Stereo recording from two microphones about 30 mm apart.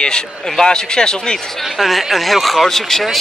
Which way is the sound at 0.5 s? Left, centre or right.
Left.